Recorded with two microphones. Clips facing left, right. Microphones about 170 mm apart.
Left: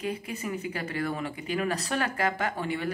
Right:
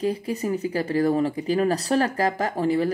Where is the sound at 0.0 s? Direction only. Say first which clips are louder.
Right 8 dB; 35° right (ahead or behind).